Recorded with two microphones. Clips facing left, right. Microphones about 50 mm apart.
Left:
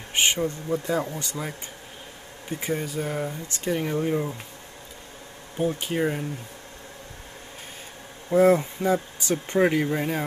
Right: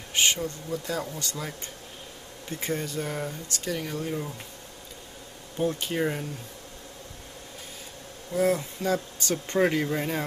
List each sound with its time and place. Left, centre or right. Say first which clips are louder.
0.1 s speech: left 2 dB; left
2.5 s speech: left 2 dB; centre
3.4 s speech: left 5 dB; left
5.6 s speech: left 2 dB; centre
8.3 s speech: left 7 dB; left
8.8 s speech: left 3 dB; centre